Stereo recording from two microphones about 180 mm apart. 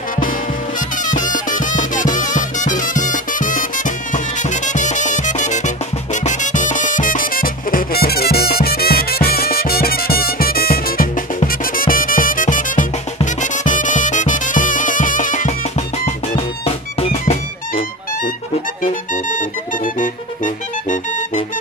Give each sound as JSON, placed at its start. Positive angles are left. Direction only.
{"t": 1.0, "sound": "music", "side_deg": 45}
{"t": 16.3, "sound": "music", "side_deg": 35}
{"t": 18.8, "sound": "music", "side_deg": 45}